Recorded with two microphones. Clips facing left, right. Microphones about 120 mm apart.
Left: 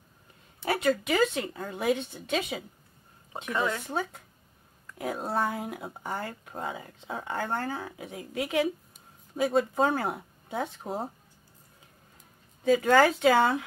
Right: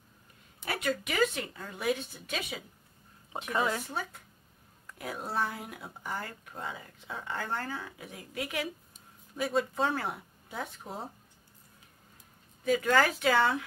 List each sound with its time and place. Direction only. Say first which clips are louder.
0.7 s speech: left 7 dB; 25° left (ahead or behind)
3.4 s speech: left 1 dB; 25° right (ahead or behind)
3.8 s speech: left 5 dB; 25° left (ahead or behind)
12.7 s speech: left 5 dB; 25° left (ahead or behind)